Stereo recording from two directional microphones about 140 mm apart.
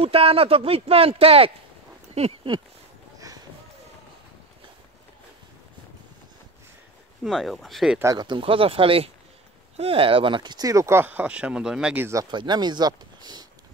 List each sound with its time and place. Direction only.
0.0 s speech: 45° right (ahead or behind)
7.2 s speech: centre (ahead or behind)
8.0 s speech: 25° right (ahead or behind); by 12.1 s 10° right (ahead or behind)
12.1 s speech: 30° right (ahead or behind)